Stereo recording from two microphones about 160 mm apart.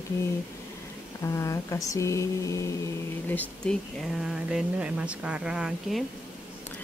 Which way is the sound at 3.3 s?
5° left (ahead or behind).